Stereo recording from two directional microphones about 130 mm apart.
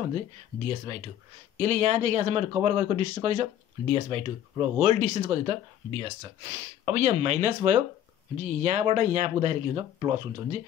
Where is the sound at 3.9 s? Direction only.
50° right (ahead or behind).